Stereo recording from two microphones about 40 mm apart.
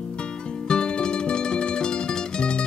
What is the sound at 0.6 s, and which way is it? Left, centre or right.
Music, left.